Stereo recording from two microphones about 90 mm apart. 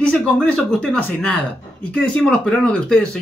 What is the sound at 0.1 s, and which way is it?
Speech, 10° left (ahead or behind).